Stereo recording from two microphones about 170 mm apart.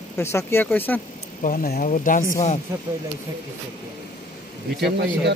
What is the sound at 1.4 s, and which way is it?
Speech, 55° left (ahead or behind).